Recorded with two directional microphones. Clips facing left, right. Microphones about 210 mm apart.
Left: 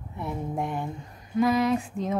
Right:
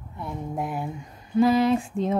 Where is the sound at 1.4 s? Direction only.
30° right (ahead or behind).